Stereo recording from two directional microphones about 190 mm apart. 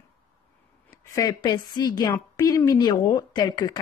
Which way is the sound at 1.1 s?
20° left (ahead or behind).